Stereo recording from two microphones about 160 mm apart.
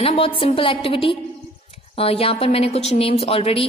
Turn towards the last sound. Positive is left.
turn(degrees=35)  # may be behind; listen again after turning